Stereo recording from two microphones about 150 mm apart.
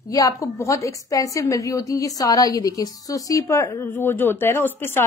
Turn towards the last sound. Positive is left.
turn(degrees=15)  # may be behind; listen again after turning